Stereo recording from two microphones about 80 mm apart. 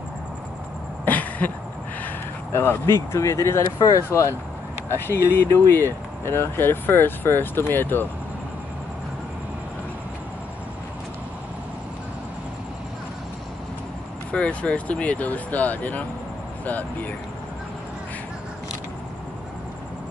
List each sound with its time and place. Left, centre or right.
1.0 s a sound: left
2.5 s speech: left
14.3 s speech: centre